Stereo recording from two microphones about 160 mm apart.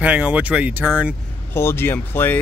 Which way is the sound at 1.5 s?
15° left (ahead or behind).